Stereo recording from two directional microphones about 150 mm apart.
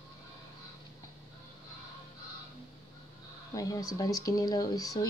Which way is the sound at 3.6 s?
25° left (ahead or behind).